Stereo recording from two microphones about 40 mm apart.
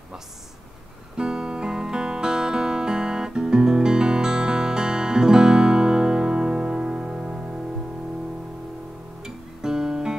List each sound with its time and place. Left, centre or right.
1.1 s music: centre
9.2 s guitar: centre